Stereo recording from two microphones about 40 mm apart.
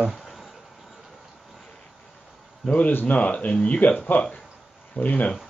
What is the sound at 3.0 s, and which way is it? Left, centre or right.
Speech, left.